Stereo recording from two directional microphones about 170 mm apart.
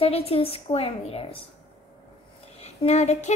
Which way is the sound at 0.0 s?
35° left (ahead or behind).